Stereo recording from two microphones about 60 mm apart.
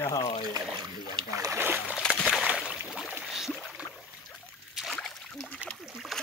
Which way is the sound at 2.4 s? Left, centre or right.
Centre.